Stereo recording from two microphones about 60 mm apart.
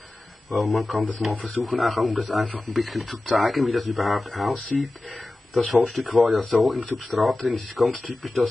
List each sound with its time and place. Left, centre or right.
0.5 s speech: centre
6.1 s speech: centre
6.5 s speech: centre